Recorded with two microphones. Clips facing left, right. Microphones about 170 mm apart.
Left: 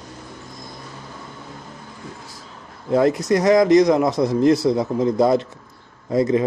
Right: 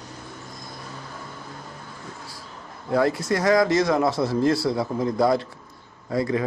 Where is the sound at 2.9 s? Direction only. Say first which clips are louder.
Left 5 dB; 20° left (ahead or behind).